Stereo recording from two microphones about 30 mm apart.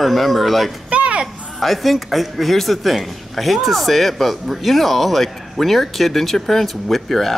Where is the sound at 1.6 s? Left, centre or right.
Centre.